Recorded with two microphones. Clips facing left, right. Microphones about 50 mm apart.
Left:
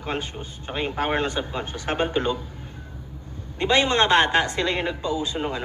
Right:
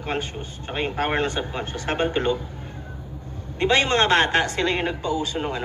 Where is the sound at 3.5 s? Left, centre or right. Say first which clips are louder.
Even; right.